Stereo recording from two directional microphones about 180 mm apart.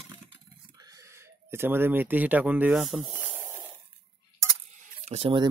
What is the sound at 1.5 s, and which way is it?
Speech, 10° right (ahead or behind).